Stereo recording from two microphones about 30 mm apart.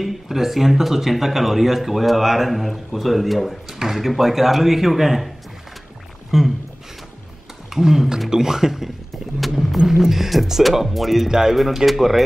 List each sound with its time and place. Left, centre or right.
0.0 s speech: centre
6.3 s speech: centre
7.7 s speech: centre
9.4 s speech: centre
9.8 s speech: centre
11.2 s speech: centre
11.5 s speech: centre